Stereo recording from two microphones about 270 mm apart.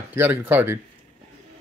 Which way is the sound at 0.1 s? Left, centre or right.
Centre.